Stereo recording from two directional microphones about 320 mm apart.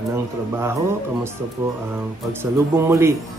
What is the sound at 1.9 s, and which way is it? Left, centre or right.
A man's voice, centre.